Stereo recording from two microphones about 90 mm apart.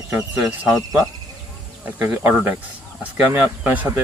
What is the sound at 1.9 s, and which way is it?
Speech, 20° right (ahead or behind).